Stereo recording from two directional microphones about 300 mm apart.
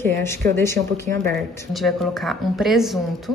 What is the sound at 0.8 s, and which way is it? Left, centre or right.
Speech, right.